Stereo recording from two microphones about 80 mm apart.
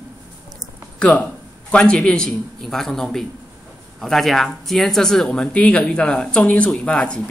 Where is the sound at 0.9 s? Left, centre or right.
Centre.